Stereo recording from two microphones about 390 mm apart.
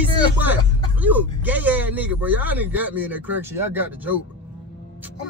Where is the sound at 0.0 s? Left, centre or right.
Centre.